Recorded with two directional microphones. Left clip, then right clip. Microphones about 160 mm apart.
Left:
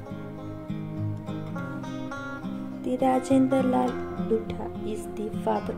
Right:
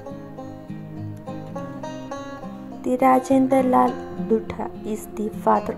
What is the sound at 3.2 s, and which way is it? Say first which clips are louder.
Speech: right 5 dB; 15° right (ahead or behind).